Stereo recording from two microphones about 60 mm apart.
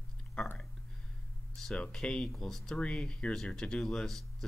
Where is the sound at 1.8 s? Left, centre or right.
Centre.